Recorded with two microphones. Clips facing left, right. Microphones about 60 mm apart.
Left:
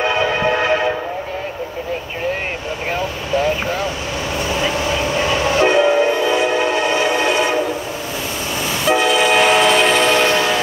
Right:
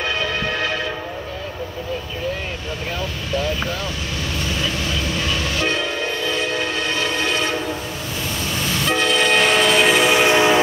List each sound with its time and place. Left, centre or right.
0.0 s train: left
3.0 s vehicle: left
4.5 s train: left
8.8 s train: centre